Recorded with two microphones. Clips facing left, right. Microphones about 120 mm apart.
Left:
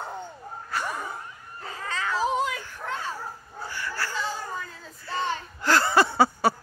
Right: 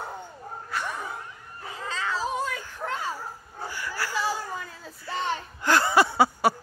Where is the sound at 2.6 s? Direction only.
5° right (ahead or behind).